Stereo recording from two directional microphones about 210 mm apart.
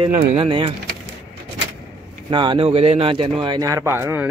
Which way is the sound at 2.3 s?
25° right (ahead or behind).